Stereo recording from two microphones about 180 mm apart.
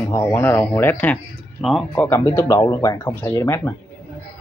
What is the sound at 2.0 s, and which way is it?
Speech, 15° left (ahead or behind).